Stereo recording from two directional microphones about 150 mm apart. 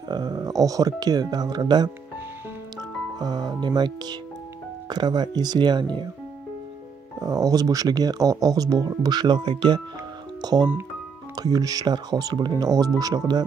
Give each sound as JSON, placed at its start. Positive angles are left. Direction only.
{"t": 0.1, "sound": "speech", "side_deg": -30}
{"t": 3.2, "sound": "speech", "side_deg": -30}
{"t": 7.2, "sound": "speech", "side_deg": -25}